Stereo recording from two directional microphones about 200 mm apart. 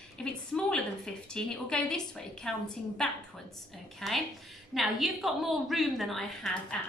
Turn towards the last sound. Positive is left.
turn(degrees=0)  # may be behind; listen again after turning